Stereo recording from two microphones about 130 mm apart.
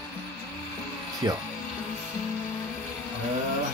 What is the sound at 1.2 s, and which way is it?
Speech, 30° right (ahead or behind).